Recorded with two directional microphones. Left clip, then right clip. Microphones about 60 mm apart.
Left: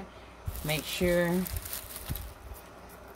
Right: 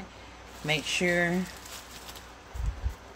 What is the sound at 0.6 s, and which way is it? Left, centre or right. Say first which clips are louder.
Speech: right 3 dB; centre.